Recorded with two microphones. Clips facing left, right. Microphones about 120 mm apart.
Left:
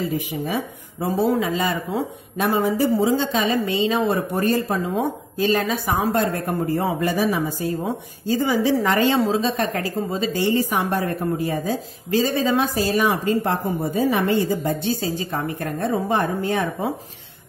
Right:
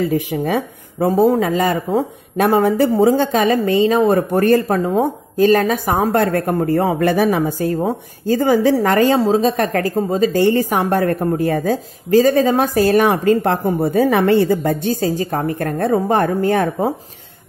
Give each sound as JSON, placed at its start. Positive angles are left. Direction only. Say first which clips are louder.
{"t": 0.0, "sound": "speech", "louder": "right 7 dB", "side_deg": -60}
{"t": 14.0, "sound": "speech", "louder": "right 5 dB", "side_deg": -55}